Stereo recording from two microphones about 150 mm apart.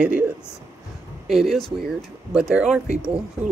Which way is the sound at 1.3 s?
Centre (ahead or behind).